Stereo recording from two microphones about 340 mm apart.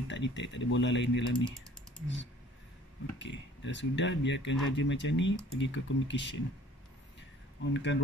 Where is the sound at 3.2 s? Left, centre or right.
Left.